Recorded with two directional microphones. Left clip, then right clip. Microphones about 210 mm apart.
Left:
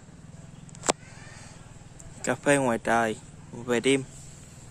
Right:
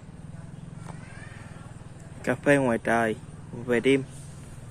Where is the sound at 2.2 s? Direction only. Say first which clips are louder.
Right 1 dB; 25° left (ahead or behind).